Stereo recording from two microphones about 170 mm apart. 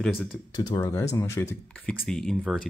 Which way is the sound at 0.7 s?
15° left (ahead or behind).